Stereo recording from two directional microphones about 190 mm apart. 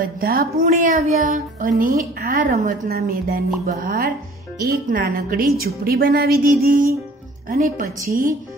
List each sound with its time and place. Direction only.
0.0 s speech: 50° right (ahead or behind)